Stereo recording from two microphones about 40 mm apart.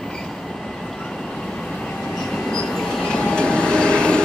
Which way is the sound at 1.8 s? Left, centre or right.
Centre.